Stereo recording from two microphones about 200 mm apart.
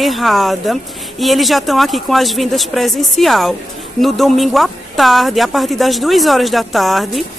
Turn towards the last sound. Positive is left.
turn(degrees=0)  # may be behind; listen again after turning